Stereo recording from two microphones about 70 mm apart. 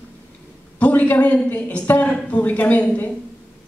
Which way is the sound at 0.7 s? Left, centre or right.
Left.